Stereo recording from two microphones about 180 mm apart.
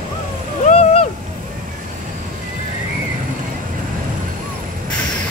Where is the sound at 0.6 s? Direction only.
35° left (ahead or behind).